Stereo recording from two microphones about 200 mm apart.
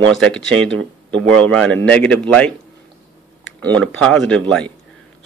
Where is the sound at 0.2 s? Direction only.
5° left (ahead or behind).